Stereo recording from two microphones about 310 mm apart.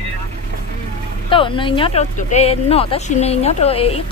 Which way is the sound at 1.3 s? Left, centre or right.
Centre.